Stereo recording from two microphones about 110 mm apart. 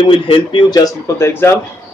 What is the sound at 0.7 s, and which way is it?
Speech, 30° left (ahead or behind).